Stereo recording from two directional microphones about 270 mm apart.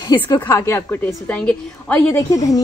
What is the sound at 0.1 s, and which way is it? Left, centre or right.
A woman's voice, centre.